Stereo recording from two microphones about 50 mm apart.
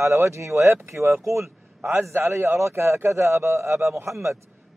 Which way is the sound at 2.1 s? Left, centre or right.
Right.